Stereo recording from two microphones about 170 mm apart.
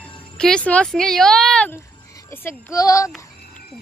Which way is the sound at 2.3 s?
15° left (ahead or behind).